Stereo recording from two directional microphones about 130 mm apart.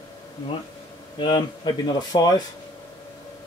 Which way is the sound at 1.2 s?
35° left (ahead or behind).